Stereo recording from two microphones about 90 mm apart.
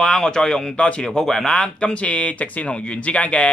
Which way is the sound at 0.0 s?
10° left (ahead or behind).